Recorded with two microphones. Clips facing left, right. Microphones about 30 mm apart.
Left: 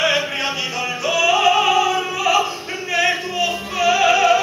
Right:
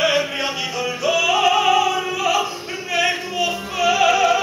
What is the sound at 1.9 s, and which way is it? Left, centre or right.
Opera, centre.